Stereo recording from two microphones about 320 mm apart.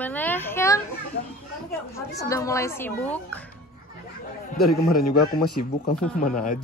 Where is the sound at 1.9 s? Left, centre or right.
Centre.